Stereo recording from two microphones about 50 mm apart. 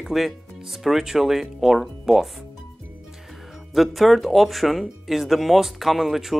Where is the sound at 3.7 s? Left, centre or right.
Centre.